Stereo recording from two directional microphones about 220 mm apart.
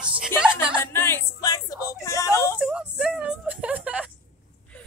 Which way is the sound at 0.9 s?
10° left (ahead or behind).